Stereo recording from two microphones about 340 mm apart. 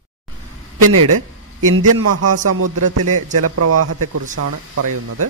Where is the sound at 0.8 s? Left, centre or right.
Right.